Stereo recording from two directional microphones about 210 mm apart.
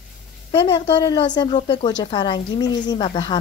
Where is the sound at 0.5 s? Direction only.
20° left (ahead or behind).